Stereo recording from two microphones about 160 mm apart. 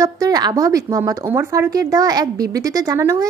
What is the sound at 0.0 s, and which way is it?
A woman's voice, 20° right (ahead or behind).